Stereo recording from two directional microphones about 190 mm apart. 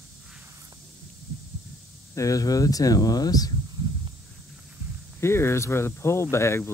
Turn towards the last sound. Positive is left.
turn(degrees=15)  # may be behind; listen again after turning